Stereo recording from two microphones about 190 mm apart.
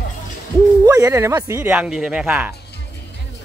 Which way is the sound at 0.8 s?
15° right (ahead or behind).